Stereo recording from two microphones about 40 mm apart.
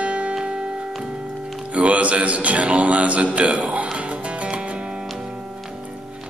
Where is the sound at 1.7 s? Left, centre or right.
Right.